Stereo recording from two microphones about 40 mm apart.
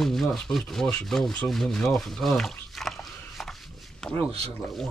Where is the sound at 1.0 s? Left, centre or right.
Centre.